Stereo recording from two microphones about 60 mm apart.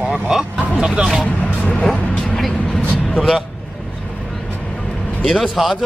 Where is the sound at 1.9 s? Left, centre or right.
Centre.